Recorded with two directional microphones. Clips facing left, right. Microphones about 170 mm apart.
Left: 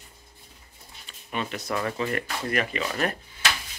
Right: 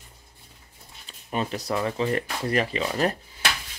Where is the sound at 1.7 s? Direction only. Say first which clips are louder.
Right 2 dB; 20° right (ahead or behind).